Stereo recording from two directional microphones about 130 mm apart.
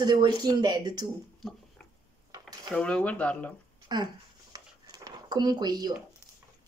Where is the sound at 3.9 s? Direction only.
35° right (ahead or behind).